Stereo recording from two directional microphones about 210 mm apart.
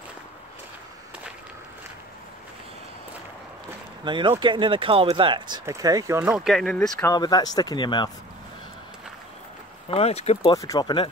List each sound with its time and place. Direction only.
4.0 s speech: 20° right (ahead or behind); by 7.1 s 5° left (ahead or behind)
7.1 s speech: 20° left (ahead or behind)
9.8 s speech: 30° left (ahead or behind)